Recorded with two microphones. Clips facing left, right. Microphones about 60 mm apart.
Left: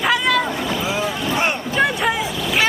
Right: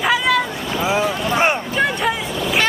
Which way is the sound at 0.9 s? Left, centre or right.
Right.